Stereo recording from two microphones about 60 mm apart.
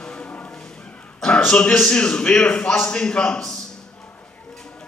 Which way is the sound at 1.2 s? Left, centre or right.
Centre.